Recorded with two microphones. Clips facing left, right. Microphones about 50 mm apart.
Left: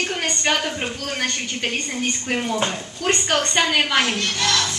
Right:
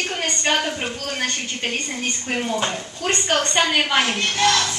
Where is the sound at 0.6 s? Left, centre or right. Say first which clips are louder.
Even; centre.